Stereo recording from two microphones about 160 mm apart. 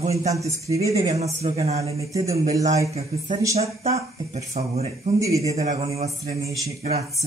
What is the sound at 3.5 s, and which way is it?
Speech, 40° right (ahead or behind).